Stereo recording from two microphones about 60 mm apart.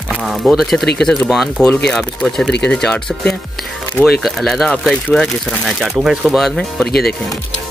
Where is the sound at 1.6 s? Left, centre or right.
Left.